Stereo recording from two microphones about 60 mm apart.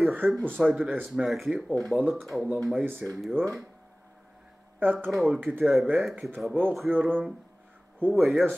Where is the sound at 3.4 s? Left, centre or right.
Right.